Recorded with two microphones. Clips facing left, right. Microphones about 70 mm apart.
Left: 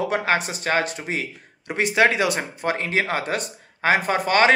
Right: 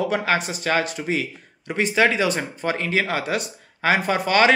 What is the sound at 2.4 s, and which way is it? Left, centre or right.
Speech, left.